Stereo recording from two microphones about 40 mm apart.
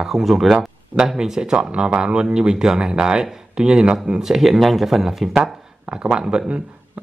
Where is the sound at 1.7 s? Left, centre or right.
Right.